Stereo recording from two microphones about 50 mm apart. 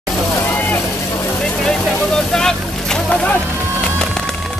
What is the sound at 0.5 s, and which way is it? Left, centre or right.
Vehicle, left.